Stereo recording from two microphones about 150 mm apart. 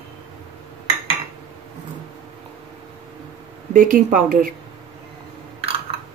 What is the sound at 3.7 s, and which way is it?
Speech, 65° right (ahead or behind).